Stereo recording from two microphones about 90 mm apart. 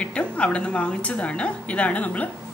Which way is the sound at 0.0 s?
15° left (ahead or behind).